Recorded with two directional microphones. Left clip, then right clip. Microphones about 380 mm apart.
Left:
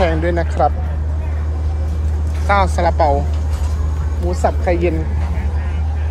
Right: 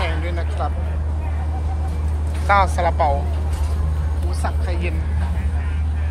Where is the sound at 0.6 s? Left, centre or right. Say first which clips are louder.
Left 12 dB; left.